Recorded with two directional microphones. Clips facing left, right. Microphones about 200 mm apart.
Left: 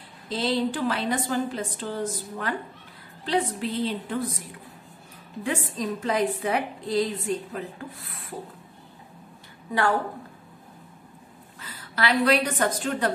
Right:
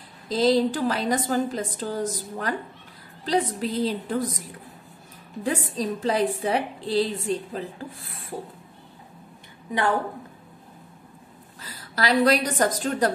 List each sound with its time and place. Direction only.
0.3 s a woman's voice: 40° right (ahead or behind)
5.4 s a woman's voice: 35° right (ahead or behind)
11.6 s a woman's voice: 35° right (ahead or behind)